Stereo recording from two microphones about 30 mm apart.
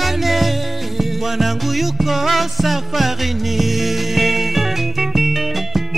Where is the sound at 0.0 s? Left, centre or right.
Centre.